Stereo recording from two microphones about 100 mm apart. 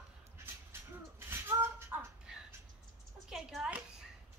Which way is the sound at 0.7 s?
25° right (ahead or behind).